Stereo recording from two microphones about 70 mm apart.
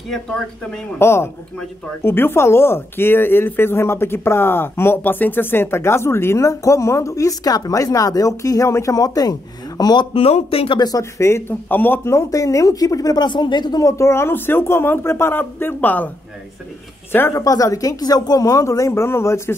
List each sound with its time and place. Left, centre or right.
0.1 s speech: centre
0.9 s speech: left
11.0 s speech: left
11.7 s speech: left
12.0 s a woman's voice: left
13.8 s speech: left
17.3 s speech: left